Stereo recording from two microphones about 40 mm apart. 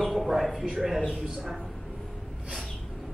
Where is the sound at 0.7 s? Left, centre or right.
Centre.